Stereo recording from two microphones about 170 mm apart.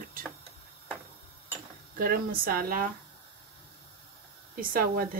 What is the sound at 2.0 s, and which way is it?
Speech, 60° right (ahead or behind).